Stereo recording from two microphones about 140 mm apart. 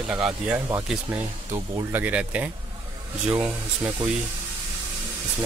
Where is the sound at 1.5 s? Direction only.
25° right (ahead or behind).